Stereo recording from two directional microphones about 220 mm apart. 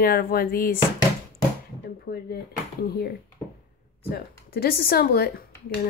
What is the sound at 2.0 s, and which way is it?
Speech, 45° left (ahead or behind).